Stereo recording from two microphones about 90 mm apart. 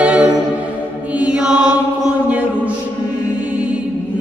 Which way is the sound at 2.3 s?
15° right (ahead or behind).